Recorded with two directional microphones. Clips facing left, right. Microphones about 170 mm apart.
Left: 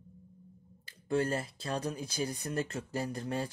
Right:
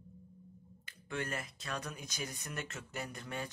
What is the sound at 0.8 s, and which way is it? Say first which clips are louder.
Speech: left 10 dB; 35° left (ahead or behind).